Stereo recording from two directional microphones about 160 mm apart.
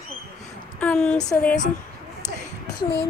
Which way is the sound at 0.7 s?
5° left (ahead or behind).